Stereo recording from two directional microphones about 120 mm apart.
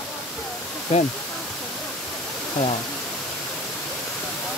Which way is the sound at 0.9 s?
60° left (ahead or behind).